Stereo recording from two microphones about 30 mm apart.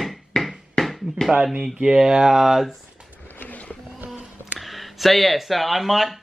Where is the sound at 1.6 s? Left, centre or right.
Right.